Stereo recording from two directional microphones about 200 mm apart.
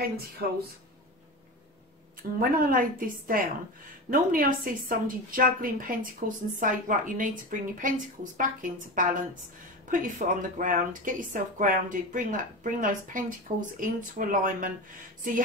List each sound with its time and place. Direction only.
2.2 s a woman's voice: 45° right (ahead or behind)